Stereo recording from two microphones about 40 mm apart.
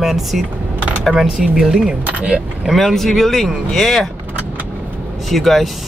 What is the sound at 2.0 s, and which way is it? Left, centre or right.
Speech, right.